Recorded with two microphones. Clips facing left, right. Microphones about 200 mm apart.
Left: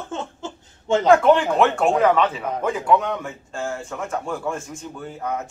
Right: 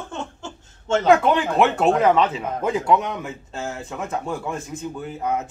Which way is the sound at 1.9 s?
20° right (ahead or behind).